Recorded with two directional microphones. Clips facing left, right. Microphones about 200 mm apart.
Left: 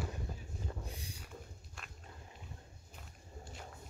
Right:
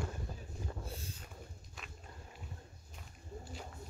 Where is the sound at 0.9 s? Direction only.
15° left (ahead or behind).